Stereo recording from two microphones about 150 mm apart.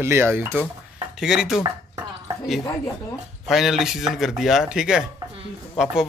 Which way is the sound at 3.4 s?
Centre (ahead or behind).